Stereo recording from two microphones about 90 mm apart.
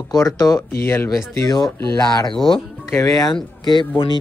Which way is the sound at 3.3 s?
60° left (ahead or behind).